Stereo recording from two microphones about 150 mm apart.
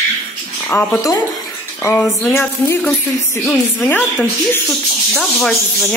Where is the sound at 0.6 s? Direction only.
10° left (ahead or behind).